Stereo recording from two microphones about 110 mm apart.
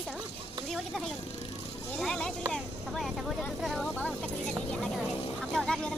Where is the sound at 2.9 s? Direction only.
Centre (ahead or behind).